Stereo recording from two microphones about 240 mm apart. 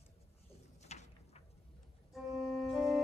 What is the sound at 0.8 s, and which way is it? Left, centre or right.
Pigeon, left.